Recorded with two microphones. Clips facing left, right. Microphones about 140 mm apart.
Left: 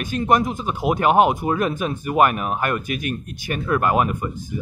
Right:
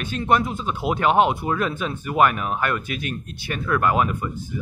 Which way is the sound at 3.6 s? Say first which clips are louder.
Left 1 dB; 30° left (ahead or behind).